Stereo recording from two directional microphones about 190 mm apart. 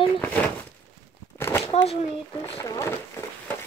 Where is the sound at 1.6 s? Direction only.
30° left (ahead or behind).